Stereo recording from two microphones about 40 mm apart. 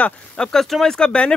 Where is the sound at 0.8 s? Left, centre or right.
Left.